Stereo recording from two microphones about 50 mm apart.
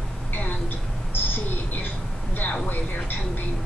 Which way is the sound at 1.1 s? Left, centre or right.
Left.